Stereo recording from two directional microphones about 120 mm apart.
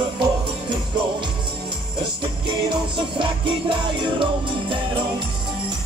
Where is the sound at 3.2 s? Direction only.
45° right (ahead or behind).